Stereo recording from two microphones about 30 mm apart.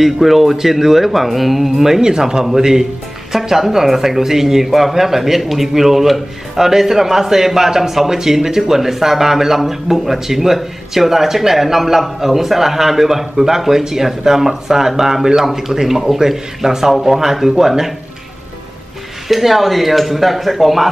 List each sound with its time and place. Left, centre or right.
0.0 s speech: centre
19.2 s speech: centre